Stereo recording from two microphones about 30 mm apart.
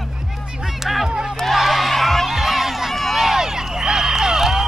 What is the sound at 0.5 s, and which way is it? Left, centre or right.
Music, centre.